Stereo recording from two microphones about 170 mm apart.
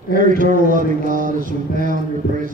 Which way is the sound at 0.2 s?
50° right (ahead or behind).